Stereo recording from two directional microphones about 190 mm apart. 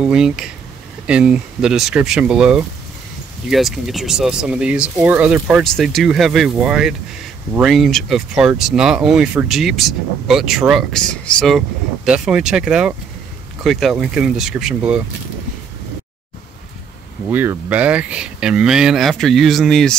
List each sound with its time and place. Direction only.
0.0 s speech: 5° right (ahead or behind)
17.3 s speech: 10° right (ahead or behind)